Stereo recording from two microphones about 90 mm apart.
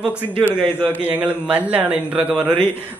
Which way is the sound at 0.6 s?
15° left (ahead or behind).